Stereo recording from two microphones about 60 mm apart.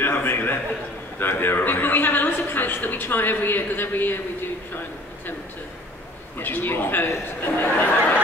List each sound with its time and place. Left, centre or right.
0.0 s a sound: left
1.4 s a woman's voice: left
6.3 s a woman's voice: left